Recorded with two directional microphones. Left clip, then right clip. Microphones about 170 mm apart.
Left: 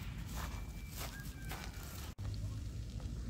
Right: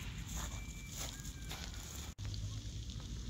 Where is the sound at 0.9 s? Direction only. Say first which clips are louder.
Even; 25° right (ahead or behind).